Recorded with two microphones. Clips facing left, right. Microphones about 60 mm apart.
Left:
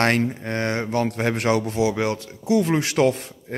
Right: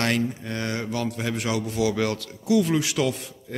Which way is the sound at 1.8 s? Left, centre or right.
Left.